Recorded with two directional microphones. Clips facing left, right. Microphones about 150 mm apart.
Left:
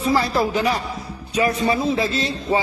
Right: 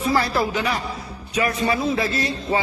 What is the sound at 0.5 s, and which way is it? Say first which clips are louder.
A man's voice: left 3 dB; 35° left (ahead or behind).